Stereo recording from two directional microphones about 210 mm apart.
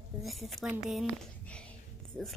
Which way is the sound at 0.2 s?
Centre (ahead or behind).